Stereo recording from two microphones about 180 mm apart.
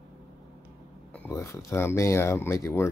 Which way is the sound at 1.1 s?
15° left (ahead or behind).